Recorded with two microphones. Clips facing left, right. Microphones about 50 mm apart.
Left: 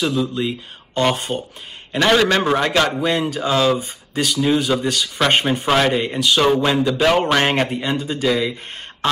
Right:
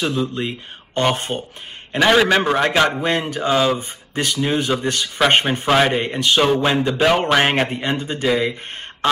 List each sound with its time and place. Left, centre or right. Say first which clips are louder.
0.0 s speech: left 1 dB; right
2.0 s a man's voice: right 1 dB; centre
3.0 s speech: left 1 dB; right
3.4 s a man's voice: even; centre
3.7 s speech: left 1 dB; right
5.7 s a man's voice: right 1 dB; centre
5.9 s speech: even; right
6.9 s a man's voice: right 1 dB; centre
7.6 s speech: even; right